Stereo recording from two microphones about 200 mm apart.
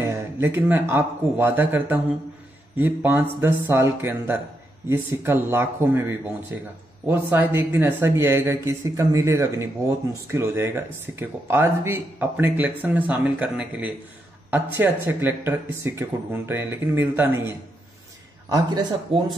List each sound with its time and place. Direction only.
0.0 s speech: 15° right (ahead or behind)
18.5 s a man's voice: 20° right (ahead or behind)